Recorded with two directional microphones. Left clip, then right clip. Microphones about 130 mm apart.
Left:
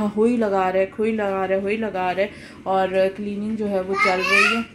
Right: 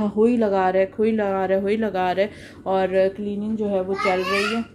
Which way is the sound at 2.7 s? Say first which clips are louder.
Even; 20° right (ahead or behind).